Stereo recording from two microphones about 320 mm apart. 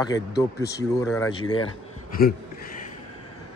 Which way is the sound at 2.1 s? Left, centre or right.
Left.